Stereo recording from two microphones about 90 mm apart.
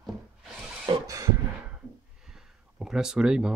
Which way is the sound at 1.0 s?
35° right (ahead or behind).